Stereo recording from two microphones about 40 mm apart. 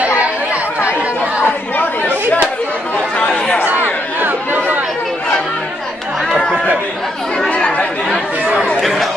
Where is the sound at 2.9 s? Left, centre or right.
Left.